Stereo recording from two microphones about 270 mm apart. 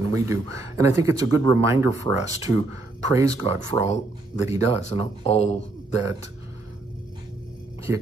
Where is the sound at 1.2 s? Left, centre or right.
Right.